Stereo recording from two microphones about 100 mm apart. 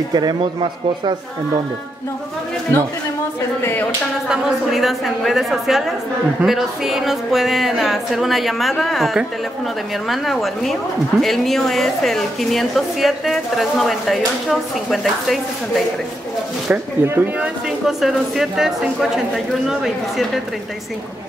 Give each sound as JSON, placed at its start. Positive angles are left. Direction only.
{"t": 0.1, "sound": "a man's voice", "side_deg": -45}
{"t": 3.6, "sound": "speech", "side_deg": 20}
{"t": 4.3, "sound": "a woman's voice", "side_deg": -5}
{"t": 16.7, "sound": "speech", "side_deg": -20}
{"t": 17.6, "sound": "a woman's voice", "side_deg": -5}